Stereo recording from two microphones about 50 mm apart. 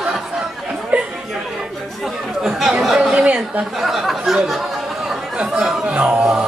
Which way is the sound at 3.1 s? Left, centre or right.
Right.